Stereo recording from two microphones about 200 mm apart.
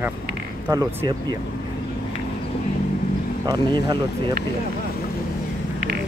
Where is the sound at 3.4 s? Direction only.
20° right (ahead or behind).